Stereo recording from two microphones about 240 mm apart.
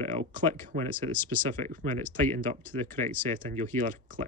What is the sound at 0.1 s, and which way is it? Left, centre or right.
Speech, right.